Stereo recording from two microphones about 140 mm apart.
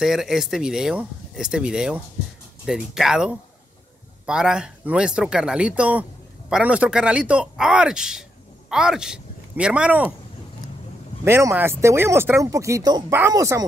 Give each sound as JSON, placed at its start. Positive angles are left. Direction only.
{"t": 0.0, "sound": "speech", "side_deg": -5}
{"t": 11.2, "sound": "speech", "side_deg": -15}